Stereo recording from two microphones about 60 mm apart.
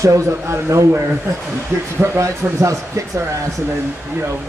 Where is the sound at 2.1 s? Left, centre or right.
Right.